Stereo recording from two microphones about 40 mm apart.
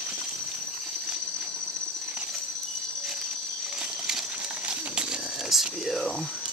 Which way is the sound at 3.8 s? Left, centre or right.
Centre.